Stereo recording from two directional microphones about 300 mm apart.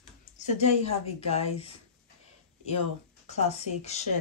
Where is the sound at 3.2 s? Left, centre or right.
Left.